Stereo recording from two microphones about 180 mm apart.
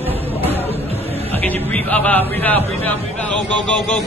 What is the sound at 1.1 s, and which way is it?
Music, 35° right (ahead or behind).